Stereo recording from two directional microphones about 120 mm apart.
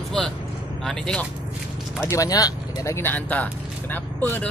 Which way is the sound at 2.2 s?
30° left (ahead or behind).